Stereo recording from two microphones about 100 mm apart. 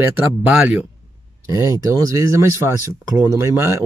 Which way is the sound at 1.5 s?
30° right (ahead or behind).